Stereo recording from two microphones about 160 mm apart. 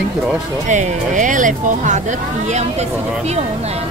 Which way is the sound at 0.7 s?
50° right (ahead or behind).